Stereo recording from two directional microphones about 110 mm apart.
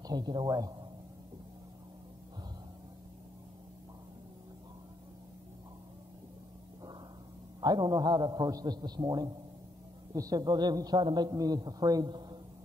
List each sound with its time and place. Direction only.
0.0 s a man's voice: 40° right (ahead or behind)
7.6 s a man's voice: 40° right (ahead or behind)